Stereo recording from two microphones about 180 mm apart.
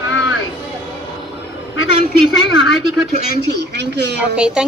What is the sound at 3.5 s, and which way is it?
Speech, 70° right (ahead or behind).